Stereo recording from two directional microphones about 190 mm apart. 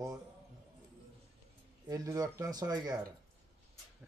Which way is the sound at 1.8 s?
20° right (ahead or behind).